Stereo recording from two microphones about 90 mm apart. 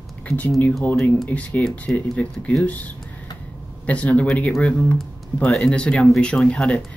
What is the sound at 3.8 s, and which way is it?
Speech, 15° left (ahead or behind).